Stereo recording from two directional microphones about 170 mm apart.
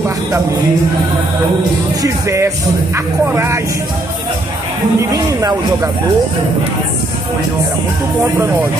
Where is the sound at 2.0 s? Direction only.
20° right (ahead or behind).